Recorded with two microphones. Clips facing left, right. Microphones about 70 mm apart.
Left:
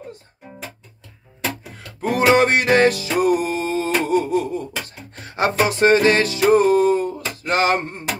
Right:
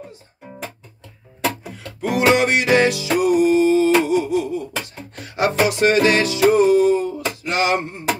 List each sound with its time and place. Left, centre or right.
2.0 s music: left
4.0 s a sound: left
5.1 s music: left